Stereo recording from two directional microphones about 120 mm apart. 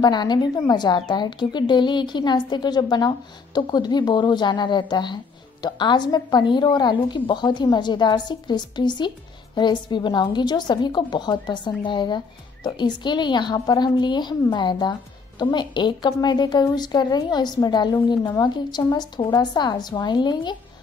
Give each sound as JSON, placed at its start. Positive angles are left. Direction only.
{"t": 0.0, "sound": "a woman's voice", "side_deg": 35}